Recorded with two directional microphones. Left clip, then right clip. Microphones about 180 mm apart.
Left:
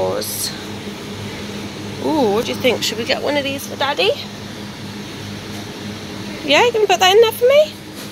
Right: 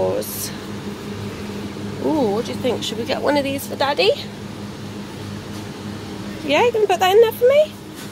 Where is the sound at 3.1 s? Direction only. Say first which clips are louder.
Right 1 dB; 25° right (ahead or behind).